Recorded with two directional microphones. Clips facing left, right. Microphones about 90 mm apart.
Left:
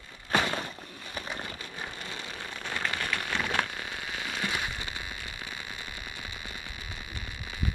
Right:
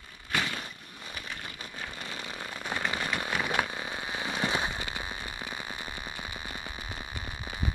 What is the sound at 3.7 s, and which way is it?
Fireworks, 25° right (ahead or behind).